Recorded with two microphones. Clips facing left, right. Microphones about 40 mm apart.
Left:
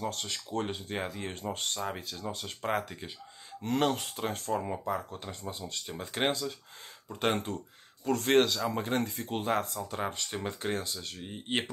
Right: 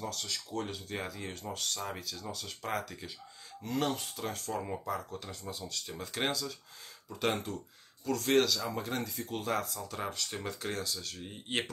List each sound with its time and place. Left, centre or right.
0.0 s speech: left
3.6 s speech: left
4.5 s speech: left
9.8 s speech: left